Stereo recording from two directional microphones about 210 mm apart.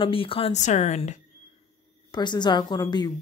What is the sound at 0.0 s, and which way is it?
Speech, 25° left (ahead or behind).